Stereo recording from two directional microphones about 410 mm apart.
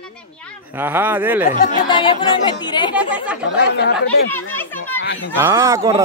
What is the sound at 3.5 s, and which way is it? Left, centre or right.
Speech, left.